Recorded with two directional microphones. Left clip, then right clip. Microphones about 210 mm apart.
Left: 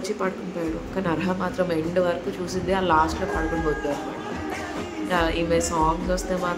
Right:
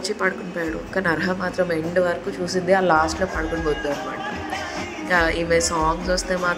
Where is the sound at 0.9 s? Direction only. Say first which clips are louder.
Right 5 dB; 20° right (ahead or behind).